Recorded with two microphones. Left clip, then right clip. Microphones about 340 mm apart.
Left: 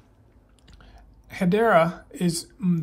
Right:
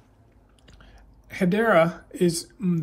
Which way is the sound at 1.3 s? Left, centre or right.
Centre.